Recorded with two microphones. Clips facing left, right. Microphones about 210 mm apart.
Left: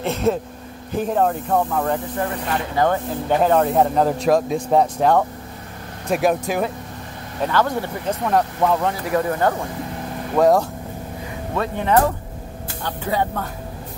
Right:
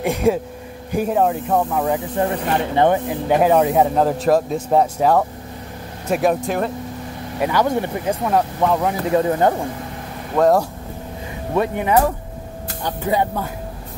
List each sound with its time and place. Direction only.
0.0 s speech: 10° right (ahead or behind)
2.2 s speech: 25° right (ahead or behind); by 6.7 s 5° left (ahead or behind)
7.3 s speech: 10° right (ahead or behind)
8.3 s speech: 5° right (ahead or behind)
9.1 s speech: 20° right (ahead or behind)
10.3 s speech: centre (ahead or behind)
11.5 s speech: 15° right (ahead or behind)